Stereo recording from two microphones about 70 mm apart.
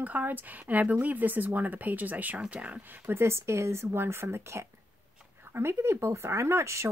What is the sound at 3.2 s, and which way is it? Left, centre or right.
Speech, right.